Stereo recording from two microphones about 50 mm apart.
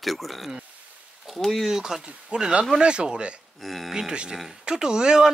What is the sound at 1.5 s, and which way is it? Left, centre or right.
Speech, centre.